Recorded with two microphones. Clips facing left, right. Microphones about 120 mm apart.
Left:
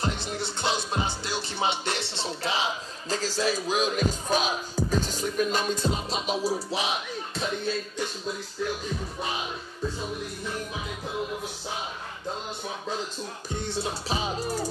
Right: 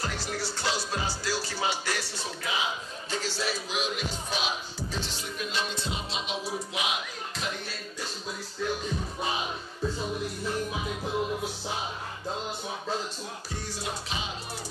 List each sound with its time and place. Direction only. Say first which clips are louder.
0.0 s music: left 3 dB; 20° left (ahead or behind)
3.1 s music: left 5 dB; 40° left (ahead or behind)
13.7 s music: left 6 dB; 40° left (ahead or behind)